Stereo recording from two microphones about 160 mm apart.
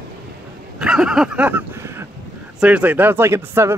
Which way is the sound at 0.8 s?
5° right (ahead or behind).